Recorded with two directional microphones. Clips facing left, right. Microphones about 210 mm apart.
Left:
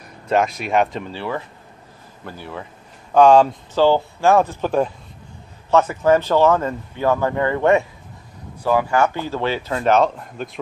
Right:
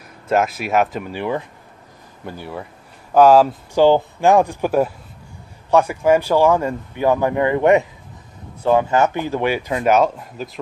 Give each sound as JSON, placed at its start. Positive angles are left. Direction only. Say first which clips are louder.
{"t": 0.3, "sound": "speech", "louder": "right 1 dB", "side_deg": -5}
{"t": 1.1, "sound": "speech", "louder": "right 3 dB", "side_deg": -15}
{"t": 3.8, "sound": "speech", "louder": "right 2 dB", "side_deg": -15}